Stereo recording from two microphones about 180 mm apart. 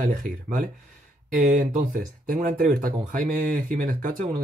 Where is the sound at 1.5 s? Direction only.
45° right (ahead or behind).